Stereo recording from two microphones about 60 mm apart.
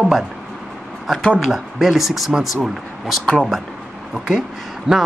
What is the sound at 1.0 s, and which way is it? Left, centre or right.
Speech, centre.